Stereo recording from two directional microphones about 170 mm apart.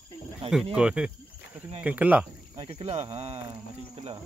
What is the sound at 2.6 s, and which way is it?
Speech, 35° right (ahead or behind).